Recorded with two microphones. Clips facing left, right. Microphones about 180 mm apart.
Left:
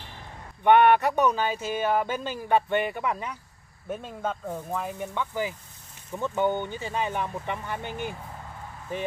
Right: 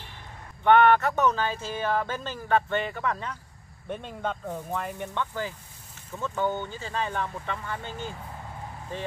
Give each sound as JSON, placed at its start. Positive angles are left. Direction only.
{"t": 0.7, "sound": "speech", "side_deg": 15}